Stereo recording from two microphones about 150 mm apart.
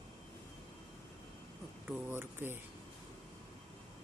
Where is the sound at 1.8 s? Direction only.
15° right (ahead or behind).